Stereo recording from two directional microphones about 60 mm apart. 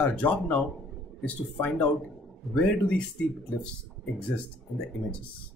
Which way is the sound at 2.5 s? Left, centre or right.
Centre.